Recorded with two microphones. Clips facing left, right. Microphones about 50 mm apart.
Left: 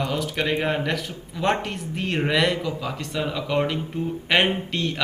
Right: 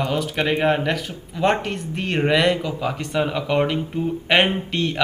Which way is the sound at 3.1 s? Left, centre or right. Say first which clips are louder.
Right 5 dB; centre.